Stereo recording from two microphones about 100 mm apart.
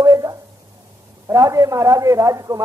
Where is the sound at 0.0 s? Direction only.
35° right (ahead or behind).